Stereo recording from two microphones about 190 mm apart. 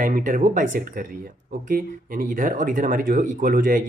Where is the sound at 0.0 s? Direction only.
45° right (ahead or behind).